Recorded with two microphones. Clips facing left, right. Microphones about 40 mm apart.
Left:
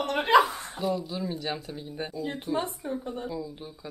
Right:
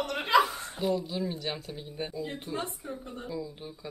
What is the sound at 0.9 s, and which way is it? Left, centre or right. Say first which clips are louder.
Speech: even; centre.